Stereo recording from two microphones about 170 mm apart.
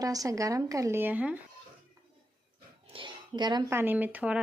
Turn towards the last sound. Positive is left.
turn(degrees=-10)  # may be behind; listen again after turning